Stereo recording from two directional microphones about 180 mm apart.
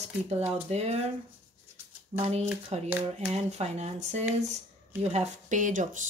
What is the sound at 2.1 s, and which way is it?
Speech, 40° right (ahead or behind).